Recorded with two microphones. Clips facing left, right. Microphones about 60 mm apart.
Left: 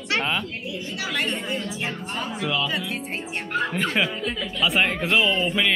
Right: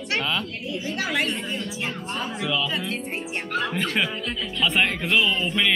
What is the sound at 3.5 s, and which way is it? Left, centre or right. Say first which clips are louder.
Speech: left 1 dB; left.